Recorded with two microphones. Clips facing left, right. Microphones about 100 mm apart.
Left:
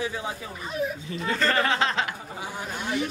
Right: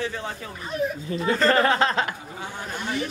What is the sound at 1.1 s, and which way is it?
Speech, 35° right (ahead or behind).